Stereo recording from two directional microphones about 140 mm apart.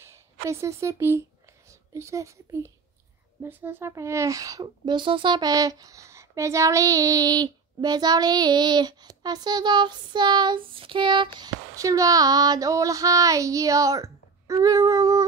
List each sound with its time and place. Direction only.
0.0 s a woman's voice: 20° right (ahead or behind)